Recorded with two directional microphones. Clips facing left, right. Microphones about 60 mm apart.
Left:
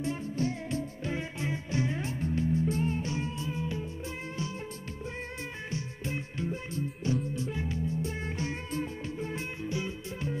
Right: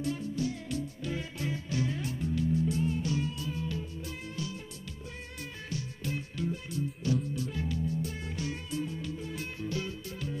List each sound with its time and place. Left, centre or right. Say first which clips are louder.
0.0 s music: left 1 dB; left
5.7 s music: right 1 dB; left